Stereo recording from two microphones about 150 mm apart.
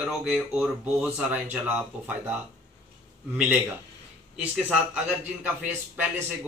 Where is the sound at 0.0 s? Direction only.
5° right (ahead or behind).